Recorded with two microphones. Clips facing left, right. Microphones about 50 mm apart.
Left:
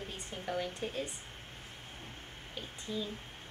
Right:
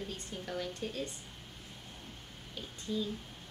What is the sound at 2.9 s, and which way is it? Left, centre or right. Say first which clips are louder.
Speech: right 3 dB; centre.